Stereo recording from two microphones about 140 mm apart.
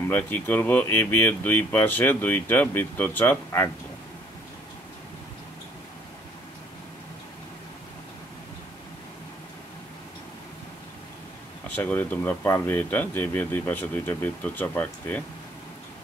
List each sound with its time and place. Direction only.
0.1 s speech: 15° left (ahead or behind)
11.7 s speech: 15° left (ahead or behind)